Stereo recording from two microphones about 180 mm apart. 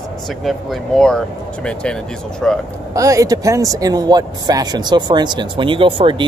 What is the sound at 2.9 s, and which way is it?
Speech, 20° right (ahead or behind).